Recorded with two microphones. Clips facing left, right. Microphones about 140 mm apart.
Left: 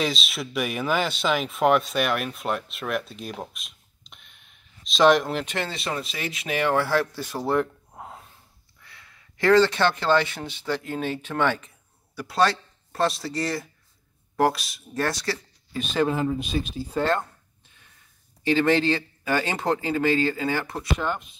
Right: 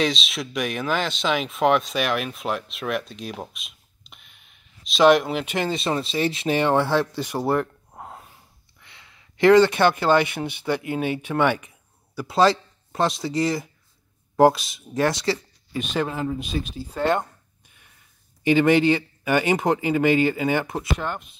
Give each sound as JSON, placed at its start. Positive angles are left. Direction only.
{"t": 0.0, "sound": "speech", "side_deg": 0}
{"t": 7.5, "sound": "a sound", "side_deg": 0}
{"t": 8.8, "sound": "speech", "side_deg": -20}
{"t": 12.3, "sound": "speech", "side_deg": -25}
{"t": 15.7, "sound": "speech", "side_deg": -10}
{"t": 18.4, "sound": "speech", "side_deg": -15}